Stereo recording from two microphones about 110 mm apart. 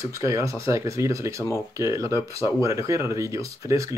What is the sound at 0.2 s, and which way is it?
Speech, 30° right (ahead or behind).